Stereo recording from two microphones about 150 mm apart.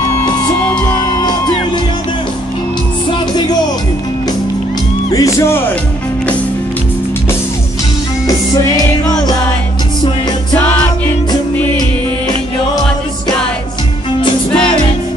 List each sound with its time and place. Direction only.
5.1 s music: 20° left (ahead or behind)